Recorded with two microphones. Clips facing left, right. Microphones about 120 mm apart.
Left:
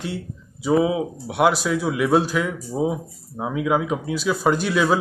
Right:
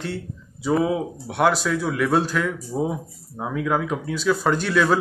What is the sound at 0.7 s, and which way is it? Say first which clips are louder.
Speech: left 2 dB; 10° left (ahead or behind).